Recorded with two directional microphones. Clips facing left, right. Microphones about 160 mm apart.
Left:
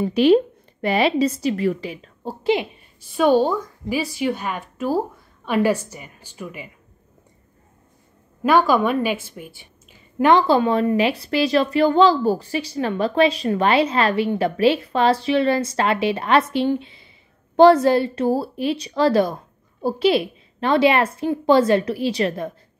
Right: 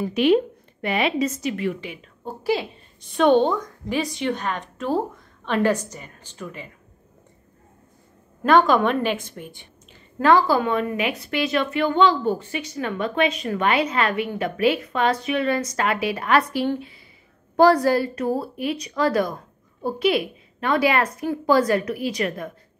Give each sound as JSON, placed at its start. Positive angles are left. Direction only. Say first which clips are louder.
{"t": 0.0, "sound": "a woman's voice", "louder": "left 3 dB", "side_deg": 35}
{"t": 2.4, "sound": "a woman's voice", "louder": "left 3 dB", "side_deg": 20}
{"t": 3.0, "sound": "a woman's voice", "louder": "even", "side_deg": 5}
{"t": 8.4, "sound": "a woman's voice", "louder": "even", "side_deg": 5}
{"t": 10.1, "sound": "a woman's voice", "louder": "left 2 dB", "side_deg": 20}